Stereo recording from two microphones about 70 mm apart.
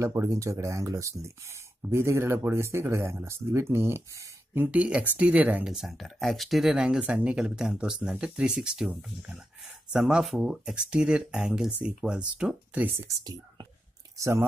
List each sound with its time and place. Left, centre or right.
0.0 s speech: right
4.6 s speech: centre
5.7 s speech: centre
9.9 s speech: centre
14.1 s speech: right